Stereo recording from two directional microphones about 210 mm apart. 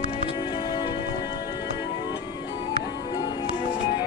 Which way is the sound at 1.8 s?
20° left (ahead or behind).